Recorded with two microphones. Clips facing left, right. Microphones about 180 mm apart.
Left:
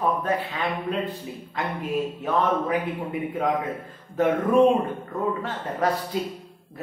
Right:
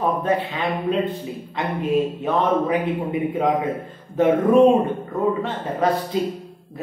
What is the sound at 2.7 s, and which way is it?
Speech, 20° right (ahead or behind).